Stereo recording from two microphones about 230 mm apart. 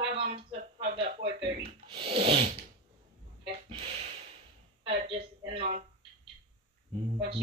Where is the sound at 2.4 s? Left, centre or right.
Right.